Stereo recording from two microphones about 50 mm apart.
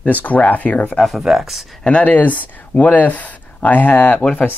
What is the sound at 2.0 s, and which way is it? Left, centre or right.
Speech, left.